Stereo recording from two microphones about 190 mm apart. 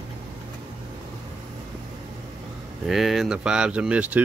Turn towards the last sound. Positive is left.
turn(degrees=-5)  # may be behind; listen again after turning